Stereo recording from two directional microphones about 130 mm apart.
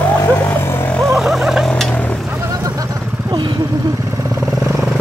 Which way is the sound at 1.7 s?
10° left (ahead or behind).